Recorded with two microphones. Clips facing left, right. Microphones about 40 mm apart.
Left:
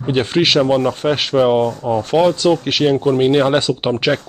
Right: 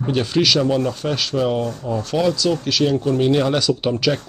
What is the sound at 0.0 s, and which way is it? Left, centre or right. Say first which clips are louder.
Speech: left 3 dB; left.